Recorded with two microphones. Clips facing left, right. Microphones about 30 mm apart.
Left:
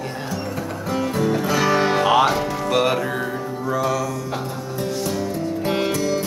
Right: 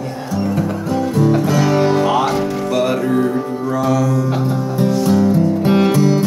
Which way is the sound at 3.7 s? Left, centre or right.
Centre.